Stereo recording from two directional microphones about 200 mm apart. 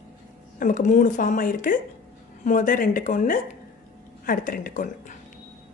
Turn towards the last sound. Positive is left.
turn(degrees=40)  # may be behind; listen again after turning